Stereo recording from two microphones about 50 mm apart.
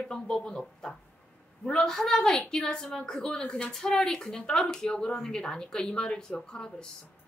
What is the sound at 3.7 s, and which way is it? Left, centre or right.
A woman's voice, centre.